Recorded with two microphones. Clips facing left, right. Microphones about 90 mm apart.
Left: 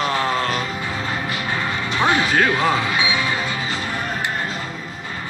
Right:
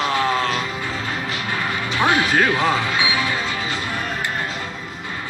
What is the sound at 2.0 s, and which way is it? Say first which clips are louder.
Music: even; 20° left (ahead or behind).